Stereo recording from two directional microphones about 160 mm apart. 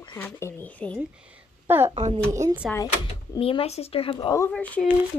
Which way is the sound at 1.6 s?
15° right (ahead or behind).